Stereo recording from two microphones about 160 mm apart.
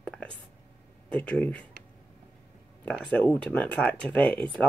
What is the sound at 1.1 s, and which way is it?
Speech, 10° left (ahead or behind).